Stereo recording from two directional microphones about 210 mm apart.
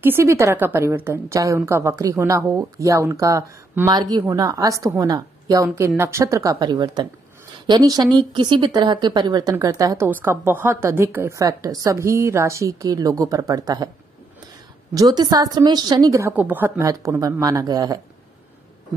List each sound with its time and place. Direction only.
0.0 s a woman's voice: 10° right (ahead or behind)
15.0 s a woman's voice: 15° right (ahead or behind)